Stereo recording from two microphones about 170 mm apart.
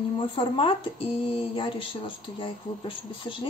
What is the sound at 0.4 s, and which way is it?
Speech, 30° left (ahead or behind).